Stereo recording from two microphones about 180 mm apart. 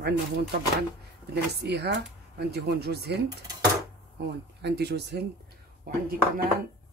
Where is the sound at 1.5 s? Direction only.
65° right (ahead or behind).